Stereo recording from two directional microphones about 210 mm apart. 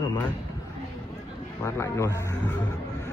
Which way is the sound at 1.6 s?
15° left (ahead or behind).